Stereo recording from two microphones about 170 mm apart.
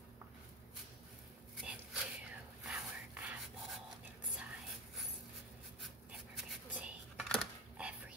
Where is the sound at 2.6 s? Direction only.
5° right (ahead or behind).